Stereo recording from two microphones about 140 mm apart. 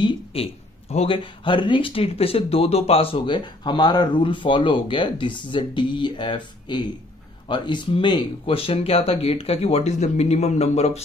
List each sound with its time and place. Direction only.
0.0 s speech: 45° left (ahead or behind)